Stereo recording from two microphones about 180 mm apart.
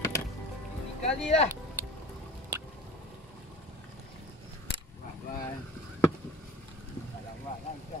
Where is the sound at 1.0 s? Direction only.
35° left (ahead or behind).